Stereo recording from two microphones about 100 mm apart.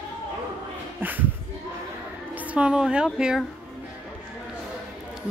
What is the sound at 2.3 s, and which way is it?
Speech, 15° right (ahead or behind).